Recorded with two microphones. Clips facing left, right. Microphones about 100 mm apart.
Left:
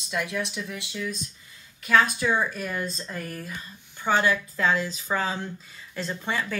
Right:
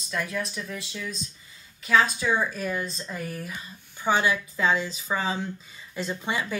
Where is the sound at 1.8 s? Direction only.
Centre (ahead or behind).